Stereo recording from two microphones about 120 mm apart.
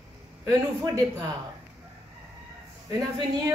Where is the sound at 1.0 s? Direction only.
30° right (ahead or behind).